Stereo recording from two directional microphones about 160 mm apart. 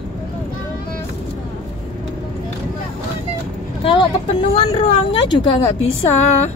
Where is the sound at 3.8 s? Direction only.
35° left (ahead or behind).